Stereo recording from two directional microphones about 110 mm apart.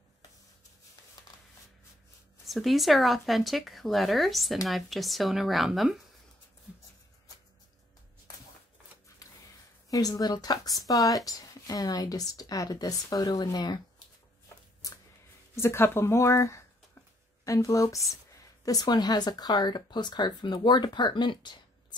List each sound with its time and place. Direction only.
2.4 s speech: centre (ahead or behind)
9.2 s gasp: 30° left (ahead or behind)
9.8 s a woman's voice: 35° left (ahead or behind)
14.8 s a sound: 30° left (ahead or behind)
15.5 s a woman's voice: 25° left (ahead or behind); by 21.5 s 45° left (ahead or behind)